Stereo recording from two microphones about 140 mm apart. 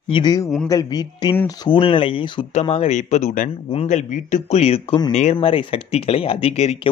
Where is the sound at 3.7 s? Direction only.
50° left (ahead or behind).